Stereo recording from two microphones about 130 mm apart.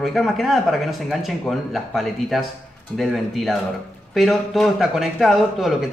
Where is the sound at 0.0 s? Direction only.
Centre (ahead or behind).